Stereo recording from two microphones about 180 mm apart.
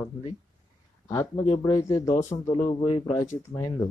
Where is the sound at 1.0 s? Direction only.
20° left (ahead or behind).